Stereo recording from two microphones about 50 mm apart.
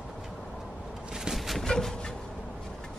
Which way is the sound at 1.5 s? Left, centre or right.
Centre.